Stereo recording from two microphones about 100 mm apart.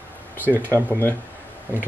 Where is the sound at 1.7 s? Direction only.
20° right (ahead or behind).